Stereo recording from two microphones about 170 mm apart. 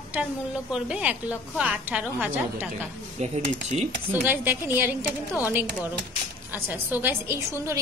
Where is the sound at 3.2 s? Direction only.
40° right (ahead or behind).